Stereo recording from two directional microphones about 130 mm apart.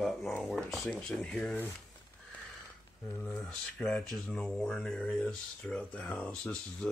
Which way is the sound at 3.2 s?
5° left (ahead or behind).